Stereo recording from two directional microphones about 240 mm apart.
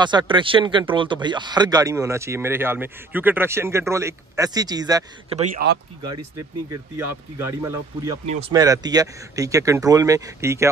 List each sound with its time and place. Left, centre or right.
0.0 s speech: centre
5.6 s speech: right
6.3 s speech: centre
8.3 s speech: right